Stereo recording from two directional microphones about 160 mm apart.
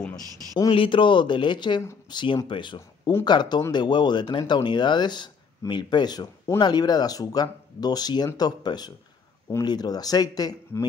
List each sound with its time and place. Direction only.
0.1 s speech: 30° left (ahead or behind)